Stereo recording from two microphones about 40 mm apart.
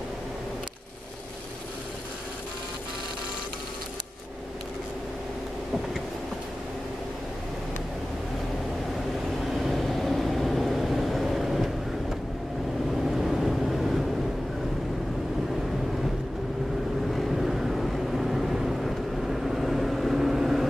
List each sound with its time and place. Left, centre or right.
9.4 s vehicle: centre
17.3 s vehicle: centre